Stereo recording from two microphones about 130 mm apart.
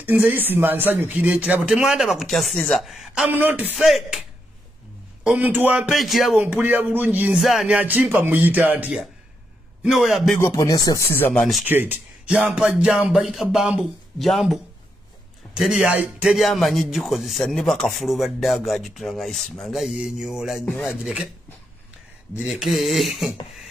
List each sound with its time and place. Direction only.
0.0 s speech: 15° right (ahead or behind)
3.3 s speech: 15° right (ahead or behind)
3.7 s speech: centre (ahead or behind)
5.2 s speech: 10° right (ahead or behind)
5.9 s speech: centre (ahead or behind)
6.4 s speech: 15° right (ahead or behind)
9.8 s speech: centre (ahead or behind)
10.4 s speech: 25° left (ahead or behind)
11.1 s speech: 15° left (ahead or behind)
11.6 s speech: 15° right (ahead or behind)
22.4 s speech: centre (ahead or behind)